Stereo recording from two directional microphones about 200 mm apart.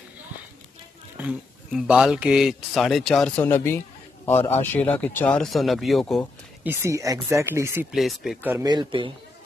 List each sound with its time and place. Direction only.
1.1 s speech: 5° right (ahead or behind)
6.6 s speech: 10° right (ahead or behind)
7.9 s speech: centre (ahead or behind)
8.6 s speech: 20° right (ahead or behind)